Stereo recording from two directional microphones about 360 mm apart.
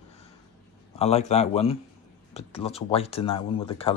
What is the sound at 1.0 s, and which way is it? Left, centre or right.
Speech, centre.